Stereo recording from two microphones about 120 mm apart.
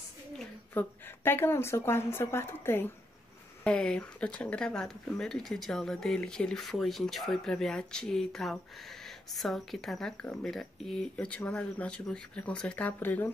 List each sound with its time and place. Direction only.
0.7 s a woman's voice: 15° left (ahead or behind)
3.6 s speech: 10° left (ahead or behind)